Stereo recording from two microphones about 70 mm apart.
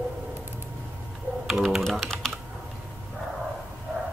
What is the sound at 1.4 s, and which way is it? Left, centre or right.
Speech, centre.